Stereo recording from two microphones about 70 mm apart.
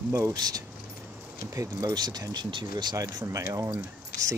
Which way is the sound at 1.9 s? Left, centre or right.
Right.